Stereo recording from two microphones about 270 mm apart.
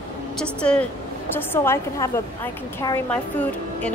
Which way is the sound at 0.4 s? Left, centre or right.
Centre.